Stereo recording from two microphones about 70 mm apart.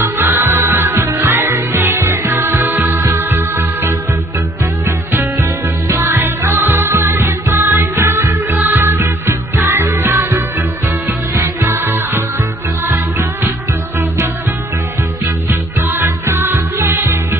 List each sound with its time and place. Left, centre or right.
0.0 s music: right
3.0 s music: right
15.9 s music: right